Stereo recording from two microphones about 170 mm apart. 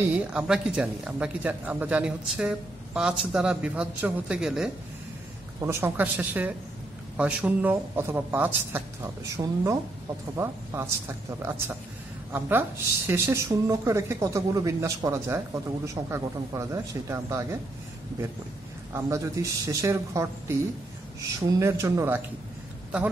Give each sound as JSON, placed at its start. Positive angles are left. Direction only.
{"t": 0.0, "sound": "speech", "side_deg": -10}
{"t": 5.6, "sound": "speech", "side_deg": -15}
{"t": 18.9, "sound": "speech", "side_deg": -15}